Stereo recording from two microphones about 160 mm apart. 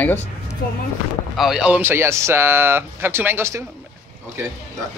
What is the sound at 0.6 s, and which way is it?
Speech, 65° left (ahead or behind).